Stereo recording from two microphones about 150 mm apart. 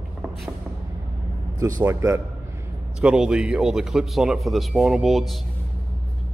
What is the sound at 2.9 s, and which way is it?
A man's voice, 5° right (ahead or behind).